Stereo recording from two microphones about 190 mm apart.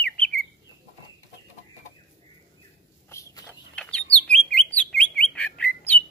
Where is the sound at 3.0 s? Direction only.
15° left (ahead or behind).